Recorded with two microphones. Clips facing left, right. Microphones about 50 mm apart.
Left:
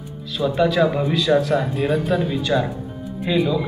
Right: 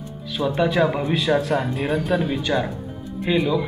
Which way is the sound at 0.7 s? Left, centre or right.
Centre.